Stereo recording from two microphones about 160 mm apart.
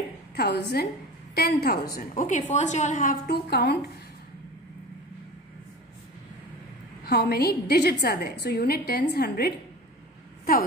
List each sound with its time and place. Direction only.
0.4 s a woman's voice: 90° left
1.3 s a woman's voice: 75° left (ahead or behind); by 3.2 s 55° left (ahead or behind)
3.3 s a woman's voice: 90° left
7.1 s a woman's voice: 80° left